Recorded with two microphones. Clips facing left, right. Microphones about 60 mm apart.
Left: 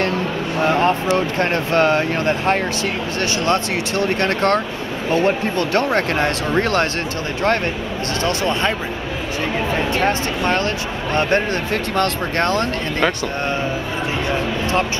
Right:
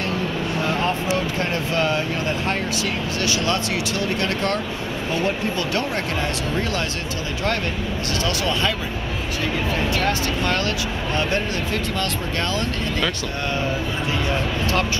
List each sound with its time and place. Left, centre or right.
0.6 s a sound: left
1.1 s speech: left
8.3 s speech: left
9.8 s speech: left
11.1 s speech: left